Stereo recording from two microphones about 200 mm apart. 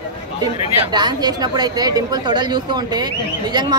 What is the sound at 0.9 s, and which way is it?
Speech, 20° right (ahead or behind).